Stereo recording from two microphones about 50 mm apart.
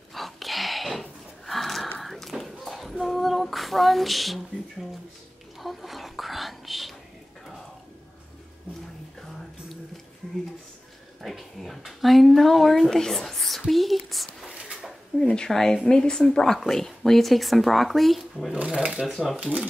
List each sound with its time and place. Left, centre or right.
0.1 s a sound: centre
3.0 s female singing: centre
5.6 s whispering: centre
10.2 s a sound: centre
11.2 s speech: centre
14.5 s a sound: centre
15.2 s speech: centre
18.5 s speech: right
18.9 s speech: centre
19.3 s speech: right